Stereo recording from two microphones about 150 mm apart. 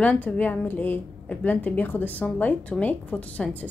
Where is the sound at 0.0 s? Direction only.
10° left (ahead or behind).